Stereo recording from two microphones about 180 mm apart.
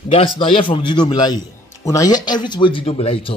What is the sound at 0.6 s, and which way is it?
A man's voice, 25° left (ahead or behind).